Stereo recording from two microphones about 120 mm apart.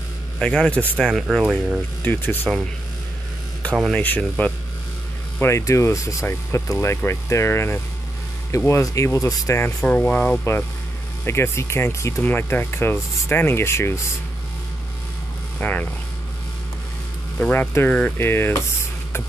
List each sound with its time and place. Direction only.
0.4 s speech: 10° left (ahead or behind)
3.9 s speech: 10° left (ahead or behind)
9.8 s speech: 15° left (ahead or behind)
11.2 s speech: 20° left (ahead or behind)
15.6 s speech: 15° left (ahead or behind)
17.4 s speech: 15° left (ahead or behind)